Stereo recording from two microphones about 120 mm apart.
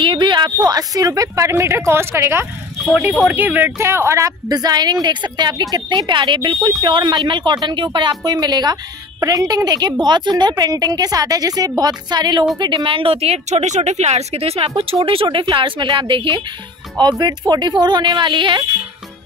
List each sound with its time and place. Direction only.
0.0 s speech: 40° right (ahead or behind)